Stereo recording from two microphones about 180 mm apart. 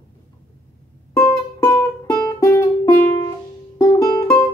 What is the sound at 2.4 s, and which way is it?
Music, 15° left (ahead or behind).